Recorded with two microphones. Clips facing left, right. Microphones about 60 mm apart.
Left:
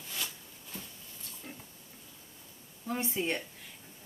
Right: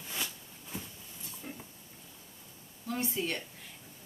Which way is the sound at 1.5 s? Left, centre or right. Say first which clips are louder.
Right 3 dB; centre.